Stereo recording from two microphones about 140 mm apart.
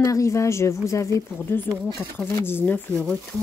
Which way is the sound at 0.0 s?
20° left (ahead or behind).